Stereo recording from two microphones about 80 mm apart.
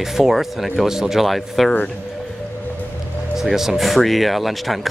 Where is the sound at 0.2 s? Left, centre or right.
Centre.